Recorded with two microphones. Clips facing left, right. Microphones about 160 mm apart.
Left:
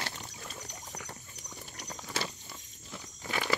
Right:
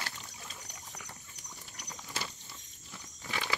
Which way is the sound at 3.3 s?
50° left (ahead or behind).